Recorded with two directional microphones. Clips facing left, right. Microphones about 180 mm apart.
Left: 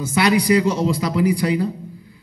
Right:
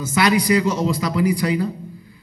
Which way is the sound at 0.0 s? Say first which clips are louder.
Left 1 dB; 30° left (ahead or behind).